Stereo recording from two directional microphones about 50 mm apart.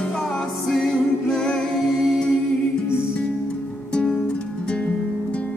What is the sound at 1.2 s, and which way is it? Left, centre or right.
Singing, centre.